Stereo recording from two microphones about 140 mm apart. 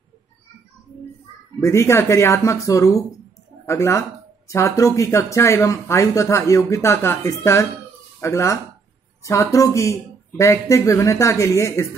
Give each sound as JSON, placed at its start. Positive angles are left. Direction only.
{"t": 1.6, "sound": "speech", "side_deg": 20}